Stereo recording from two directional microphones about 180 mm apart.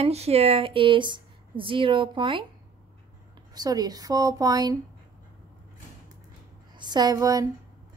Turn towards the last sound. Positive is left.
turn(degrees=-20)  # may be behind; listen again after turning